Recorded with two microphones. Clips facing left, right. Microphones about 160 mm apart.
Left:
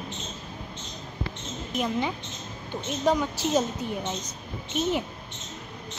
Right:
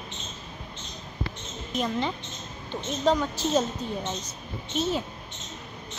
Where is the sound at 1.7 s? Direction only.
10° left (ahead or behind).